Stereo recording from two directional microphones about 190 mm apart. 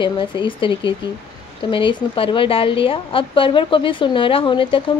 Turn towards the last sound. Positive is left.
turn(degrees=25)  # may be behind; listen again after turning